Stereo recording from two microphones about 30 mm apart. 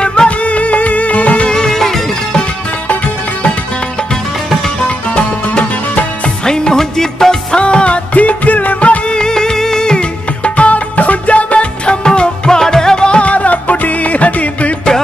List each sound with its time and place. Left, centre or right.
0.0 s music: left
0.4 s music: left
1.5 s music: left
1.8 s music: centre
4.8 s music: left
6.4 s music: left
7.5 s music: left
8.1 s music: left
9.0 s music: left
9.3 s music: centre
10.4 s music: left
13.2 s music: left